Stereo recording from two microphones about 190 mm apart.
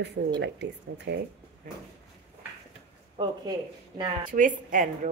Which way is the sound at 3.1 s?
25° right (ahead or behind).